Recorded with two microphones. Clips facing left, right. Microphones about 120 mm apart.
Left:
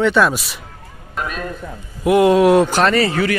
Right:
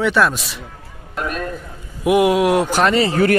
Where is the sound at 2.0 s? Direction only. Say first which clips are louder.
Left 3 dB; 15° right (ahead or behind).